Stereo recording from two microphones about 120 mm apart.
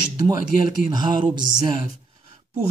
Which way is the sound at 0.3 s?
35° right (ahead or behind).